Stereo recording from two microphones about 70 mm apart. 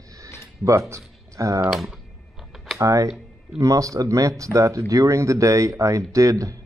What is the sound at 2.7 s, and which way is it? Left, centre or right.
Speech, right.